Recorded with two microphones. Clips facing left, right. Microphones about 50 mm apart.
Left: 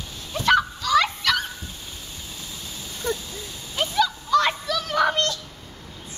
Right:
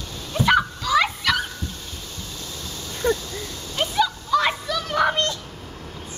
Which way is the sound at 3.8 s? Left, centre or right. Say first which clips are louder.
Right 1 dB; centre.